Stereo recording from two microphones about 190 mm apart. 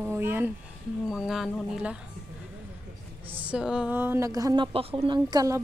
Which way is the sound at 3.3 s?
5° right (ahead or behind).